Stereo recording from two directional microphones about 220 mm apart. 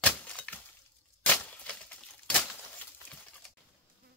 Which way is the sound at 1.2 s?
5° left (ahead or behind).